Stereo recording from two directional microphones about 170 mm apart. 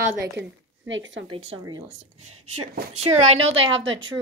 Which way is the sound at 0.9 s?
90° right.